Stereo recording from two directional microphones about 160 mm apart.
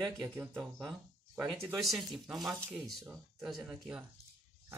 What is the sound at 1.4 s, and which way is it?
Speech, centre (ahead or behind).